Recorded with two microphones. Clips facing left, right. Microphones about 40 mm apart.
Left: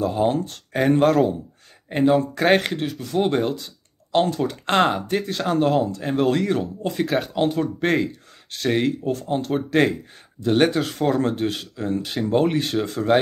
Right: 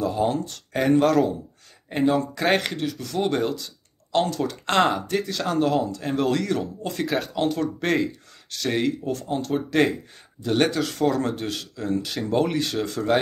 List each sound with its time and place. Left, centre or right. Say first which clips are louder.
0.0 s speech: left 2 dB; left